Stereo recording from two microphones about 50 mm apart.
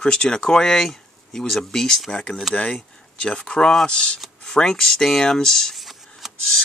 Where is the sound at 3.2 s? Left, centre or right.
Centre.